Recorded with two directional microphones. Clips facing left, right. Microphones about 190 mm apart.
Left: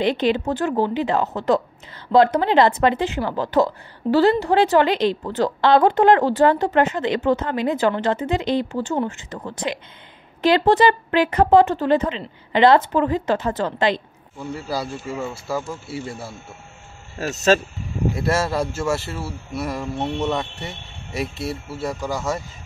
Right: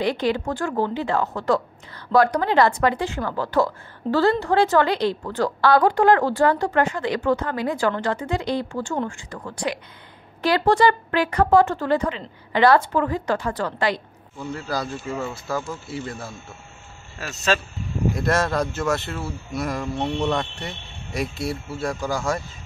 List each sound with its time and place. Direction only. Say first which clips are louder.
0.0 s a woman's voice: left 3 dB; 20° left (ahead or behind)
14.4 s speech: left 1 dB; 5° left (ahead or behind)
17.5 s speech: left 6 dB; 40° left (ahead or behind)
18.1 s a man's voice: left 1 dB; 5° left (ahead or behind)